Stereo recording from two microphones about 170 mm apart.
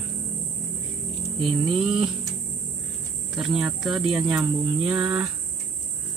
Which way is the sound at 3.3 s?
5° right (ahead or behind).